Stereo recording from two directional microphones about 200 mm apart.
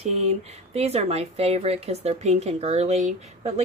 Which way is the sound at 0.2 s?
30° right (ahead or behind).